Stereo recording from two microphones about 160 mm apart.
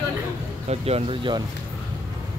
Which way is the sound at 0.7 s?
40° right (ahead or behind).